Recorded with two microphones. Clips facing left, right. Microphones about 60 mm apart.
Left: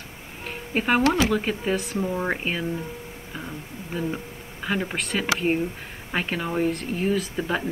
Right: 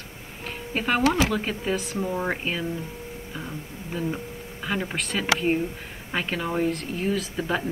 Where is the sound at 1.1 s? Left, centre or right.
Centre.